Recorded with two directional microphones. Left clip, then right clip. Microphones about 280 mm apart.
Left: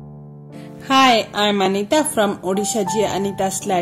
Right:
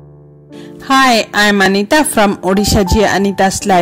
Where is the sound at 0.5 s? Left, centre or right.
Right.